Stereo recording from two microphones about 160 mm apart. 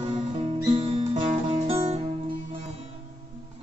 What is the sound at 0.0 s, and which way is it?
Music, 35° right (ahead or behind).